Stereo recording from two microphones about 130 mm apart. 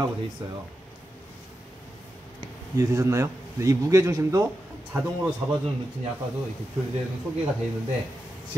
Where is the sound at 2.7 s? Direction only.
25° right (ahead or behind).